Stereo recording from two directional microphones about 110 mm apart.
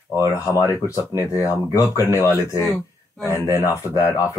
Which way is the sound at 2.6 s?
Centre (ahead or behind).